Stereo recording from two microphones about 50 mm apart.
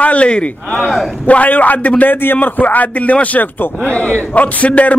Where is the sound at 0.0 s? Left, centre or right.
Left.